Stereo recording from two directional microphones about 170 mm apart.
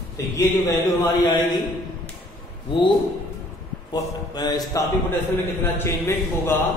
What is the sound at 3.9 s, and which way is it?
Speech, 25° left (ahead or behind).